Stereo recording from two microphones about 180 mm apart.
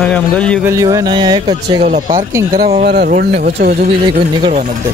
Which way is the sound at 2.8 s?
60° right (ahead or behind).